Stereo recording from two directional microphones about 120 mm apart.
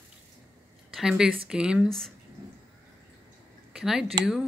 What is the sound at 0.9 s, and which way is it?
Speech, 5° right (ahead or behind).